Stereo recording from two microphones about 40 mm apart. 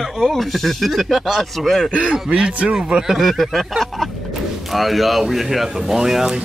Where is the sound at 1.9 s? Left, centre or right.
Right.